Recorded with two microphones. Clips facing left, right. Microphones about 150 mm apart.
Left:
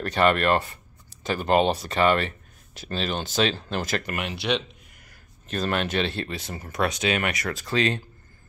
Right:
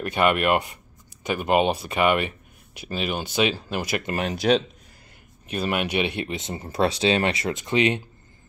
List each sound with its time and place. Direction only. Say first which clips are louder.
0.0 s speech: even; 10° right (ahead or behind)
4.0 s speech: right 6 dB; 35° right (ahead or behind)
5.5 s speech: right 1 dB; 10° right (ahead or behind)